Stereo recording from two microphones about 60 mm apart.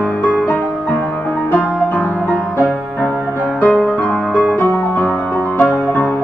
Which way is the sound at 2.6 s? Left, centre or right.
Right.